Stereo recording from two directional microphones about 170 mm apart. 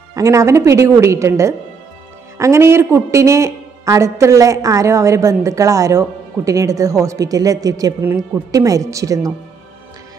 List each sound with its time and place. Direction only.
0.1 s a woman's voice: 20° right (ahead or behind)